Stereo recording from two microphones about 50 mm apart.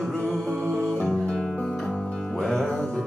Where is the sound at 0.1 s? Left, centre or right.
Left.